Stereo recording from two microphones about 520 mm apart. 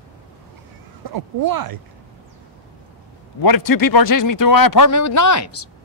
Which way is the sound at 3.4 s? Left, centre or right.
Left.